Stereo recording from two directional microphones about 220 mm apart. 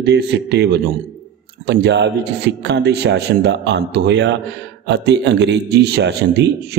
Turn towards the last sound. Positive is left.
turn(degrees=-50)  # may be behind; listen again after turning